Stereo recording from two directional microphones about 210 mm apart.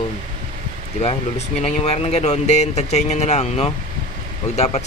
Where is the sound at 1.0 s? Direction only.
30° left (ahead or behind).